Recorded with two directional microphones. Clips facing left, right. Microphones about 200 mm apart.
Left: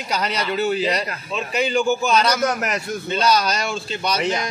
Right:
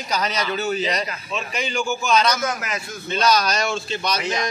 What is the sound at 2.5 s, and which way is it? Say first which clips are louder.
Speech: left 4 dB; 65° left (ahead or behind).